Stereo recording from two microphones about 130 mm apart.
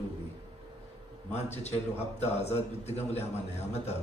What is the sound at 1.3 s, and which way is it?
A man's voice, 55° left (ahead or behind).